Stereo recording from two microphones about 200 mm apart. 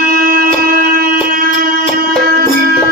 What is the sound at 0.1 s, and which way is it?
Music, 45° right (ahead or behind).